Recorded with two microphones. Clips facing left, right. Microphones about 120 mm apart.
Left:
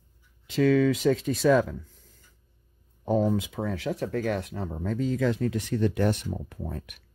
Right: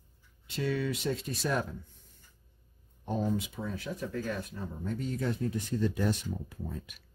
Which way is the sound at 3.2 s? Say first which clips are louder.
Left 6 dB; 90° left.